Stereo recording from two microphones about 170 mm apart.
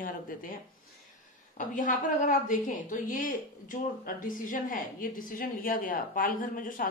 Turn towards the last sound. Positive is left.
turn(degrees=55)  # may be behind; listen again after turning